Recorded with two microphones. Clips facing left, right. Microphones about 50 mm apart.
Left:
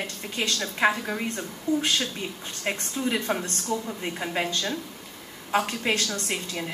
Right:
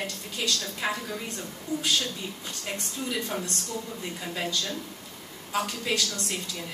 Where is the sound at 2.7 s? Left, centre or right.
Left.